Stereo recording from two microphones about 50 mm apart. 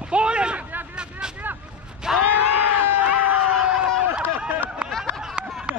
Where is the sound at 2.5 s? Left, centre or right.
Right.